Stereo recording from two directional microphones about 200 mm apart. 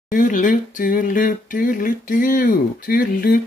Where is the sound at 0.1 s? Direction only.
40° left (ahead or behind).